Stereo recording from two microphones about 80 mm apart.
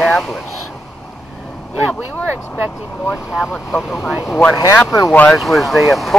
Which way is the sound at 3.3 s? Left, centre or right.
Centre.